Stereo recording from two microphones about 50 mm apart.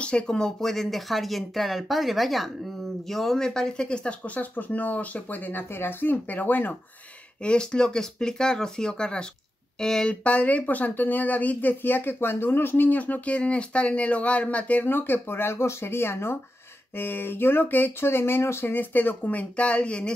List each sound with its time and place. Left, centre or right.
0.0 s speech: centre
4.2 s speech: left
7.4 s speech: centre
10.2 s speech: left
14.8 s speech: left
16.9 s speech: left
18.7 s speech: left